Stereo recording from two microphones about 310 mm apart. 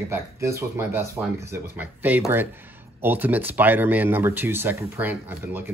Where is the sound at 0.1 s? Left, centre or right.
Centre.